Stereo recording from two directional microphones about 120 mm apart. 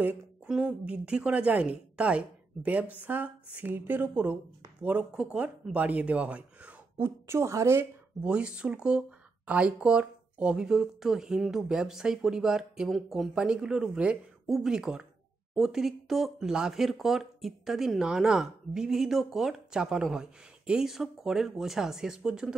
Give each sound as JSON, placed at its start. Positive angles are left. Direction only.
{"t": 0.0, "sound": "a woman's voice", "side_deg": -10}
{"t": 7.2, "sound": "a woman's voice", "side_deg": -25}
{"t": 8.2, "sound": "a woman's voice", "side_deg": -10}